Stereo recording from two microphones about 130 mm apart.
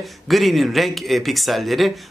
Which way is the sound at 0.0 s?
Centre (ahead or behind).